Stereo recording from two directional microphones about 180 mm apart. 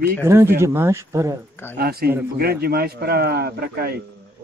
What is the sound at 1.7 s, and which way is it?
Speech, 60° right (ahead or behind).